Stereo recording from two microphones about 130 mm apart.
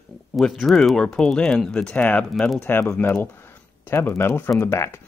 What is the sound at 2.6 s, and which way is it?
Speech, 15° left (ahead or behind).